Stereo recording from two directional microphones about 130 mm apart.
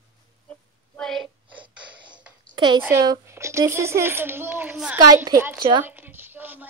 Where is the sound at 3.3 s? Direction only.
20° right (ahead or behind).